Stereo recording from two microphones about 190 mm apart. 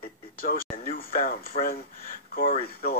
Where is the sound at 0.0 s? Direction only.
50° left (ahead or behind).